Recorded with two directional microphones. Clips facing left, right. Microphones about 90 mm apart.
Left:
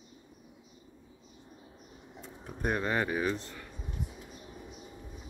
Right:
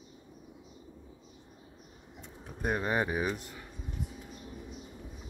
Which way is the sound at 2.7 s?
20° right (ahead or behind).